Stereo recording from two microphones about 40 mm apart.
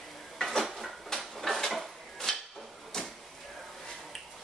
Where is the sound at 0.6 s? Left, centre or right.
Centre.